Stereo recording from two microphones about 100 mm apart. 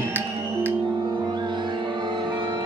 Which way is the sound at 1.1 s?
50° right (ahead or behind).